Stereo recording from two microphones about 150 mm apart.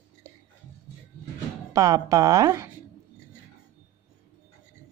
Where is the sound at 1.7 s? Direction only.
20° right (ahead or behind).